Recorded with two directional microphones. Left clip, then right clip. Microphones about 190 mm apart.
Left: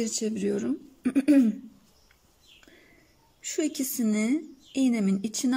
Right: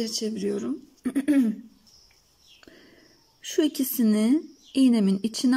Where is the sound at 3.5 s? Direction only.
15° right (ahead or behind).